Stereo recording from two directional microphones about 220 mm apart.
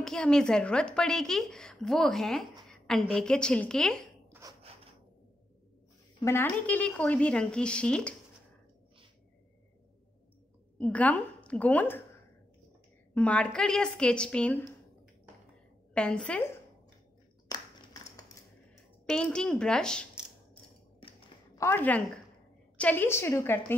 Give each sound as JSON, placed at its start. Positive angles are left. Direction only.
{"t": 0.0, "sound": "a woman's voice", "side_deg": 5}
{"t": 4.3, "sound": "a sound", "side_deg": -15}
{"t": 6.2, "sound": "a woman's voice", "side_deg": 10}
{"t": 10.8, "sound": "a woman's voice", "side_deg": 5}
{"t": 13.1, "sound": "a woman's voice", "side_deg": 5}
{"t": 15.9, "sound": "a woman's voice", "side_deg": 5}
{"t": 19.0, "sound": "a woman's voice", "side_deg": 5}
{"t": 21.0, "sound": "a sound", "side_deg": 25}
{"t": 21.5, "sound": "a woman's voice", "side_deg": 10}